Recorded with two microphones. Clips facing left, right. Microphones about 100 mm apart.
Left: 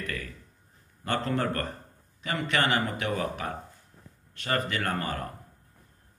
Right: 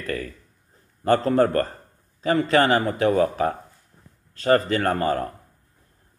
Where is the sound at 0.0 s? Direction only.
35° right (ahead or behind).